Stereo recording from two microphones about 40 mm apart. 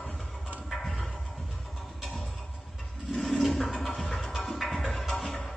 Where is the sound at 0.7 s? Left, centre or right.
Centre.